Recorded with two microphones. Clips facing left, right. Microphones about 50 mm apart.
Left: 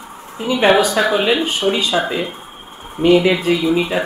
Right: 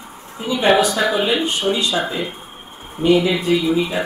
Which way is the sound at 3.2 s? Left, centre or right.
Left.